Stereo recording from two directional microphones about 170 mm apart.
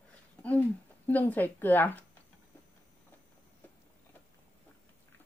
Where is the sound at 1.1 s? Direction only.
10° left (ahead or behind).